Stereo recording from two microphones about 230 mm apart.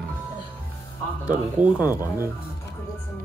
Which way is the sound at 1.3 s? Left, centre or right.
Centre.